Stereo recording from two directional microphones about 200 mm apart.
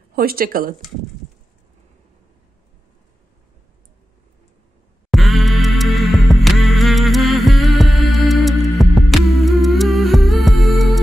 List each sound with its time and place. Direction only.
0.1 s speech: 50° right (ahead or behind)
5.1 s music: centre (ahead or behind)